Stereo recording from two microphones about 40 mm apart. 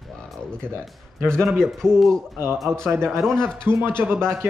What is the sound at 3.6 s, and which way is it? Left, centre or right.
Speech, right.